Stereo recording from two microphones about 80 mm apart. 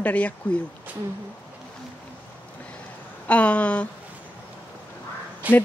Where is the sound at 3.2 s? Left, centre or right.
Centre.